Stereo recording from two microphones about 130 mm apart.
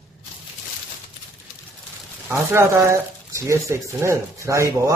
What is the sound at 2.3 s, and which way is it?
Speech, 20° right (ahead or behind).